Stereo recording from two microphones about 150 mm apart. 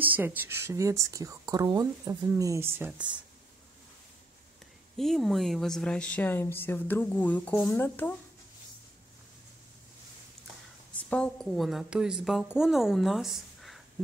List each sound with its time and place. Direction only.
0.0 s speech: 10° right (ahead or behind)
4.9 s speech: centre (ahead or behind)
11.0 s a woman's voice: 5° left (ahead or behind)